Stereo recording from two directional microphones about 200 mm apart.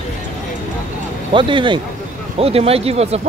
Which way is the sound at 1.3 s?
25° right (ahead or behind).